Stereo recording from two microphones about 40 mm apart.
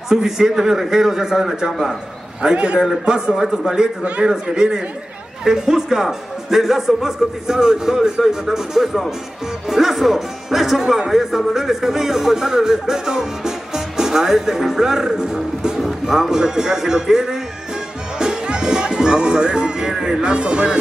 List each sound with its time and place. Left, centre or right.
0.1 s speech: centre
2.4 s speech: right
4.0 s a man's voice: right
4.3 s speech: centre